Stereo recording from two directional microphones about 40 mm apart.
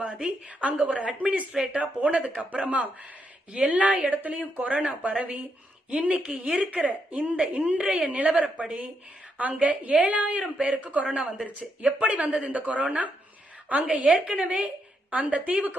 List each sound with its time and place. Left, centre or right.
0.0 s a woman's voice: right
1.5 s speech: centre
1.8 s a woman's voice: right